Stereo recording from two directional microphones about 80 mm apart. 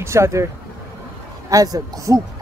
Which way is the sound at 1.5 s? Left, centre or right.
Right.